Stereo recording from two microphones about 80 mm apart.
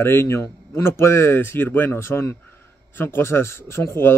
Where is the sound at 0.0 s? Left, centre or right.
Left.